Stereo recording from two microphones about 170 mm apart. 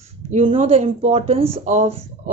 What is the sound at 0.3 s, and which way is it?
Speech, 40° right (ahead or behind).